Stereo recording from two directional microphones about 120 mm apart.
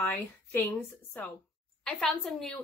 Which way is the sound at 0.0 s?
15° left (ahead or behind).